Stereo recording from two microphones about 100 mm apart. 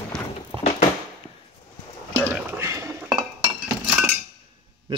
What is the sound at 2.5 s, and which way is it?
Cutlery, 30° right (ahead or behind).